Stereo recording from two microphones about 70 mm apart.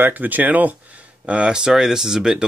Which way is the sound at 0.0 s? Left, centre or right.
Right.